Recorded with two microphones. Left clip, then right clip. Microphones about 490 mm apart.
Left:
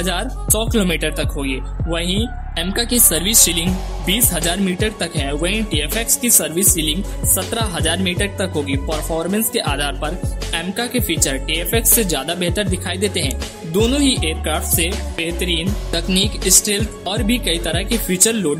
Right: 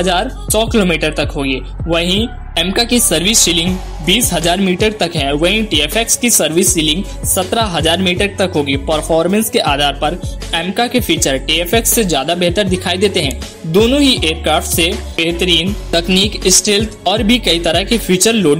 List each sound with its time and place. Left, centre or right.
0.0 s speech: left